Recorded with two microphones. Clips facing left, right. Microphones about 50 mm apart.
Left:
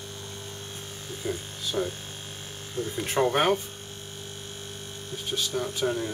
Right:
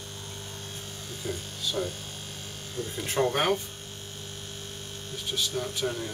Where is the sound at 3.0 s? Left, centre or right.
Centre.